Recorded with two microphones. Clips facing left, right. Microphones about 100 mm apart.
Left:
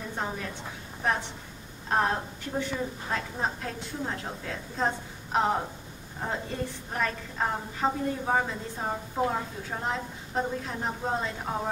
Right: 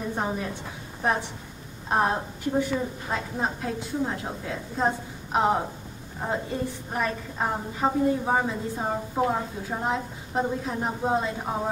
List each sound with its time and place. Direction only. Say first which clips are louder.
0.1 s a woman's voice: right 3 dB; 15° right (ahead or behind)
1.9 s a woman's voice: right 2 dB; 15° right (ahead or behind)